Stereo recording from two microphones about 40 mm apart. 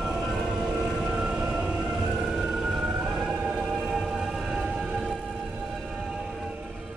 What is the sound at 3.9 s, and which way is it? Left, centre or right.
Music, centre.